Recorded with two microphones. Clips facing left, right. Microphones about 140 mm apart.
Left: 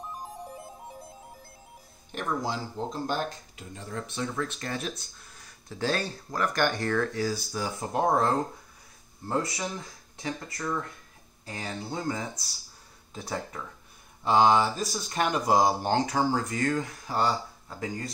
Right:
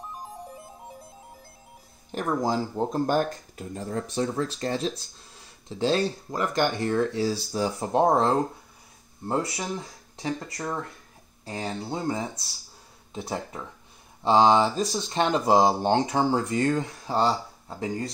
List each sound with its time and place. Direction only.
2.1 s speech: 45° right (ahead or behind)